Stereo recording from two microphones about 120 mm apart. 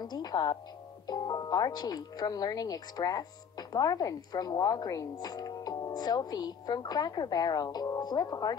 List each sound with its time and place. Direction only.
0.0 s speech: 35° left (ahead or behind)